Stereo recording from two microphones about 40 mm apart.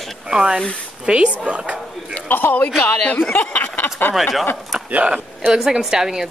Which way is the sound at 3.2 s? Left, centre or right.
Left.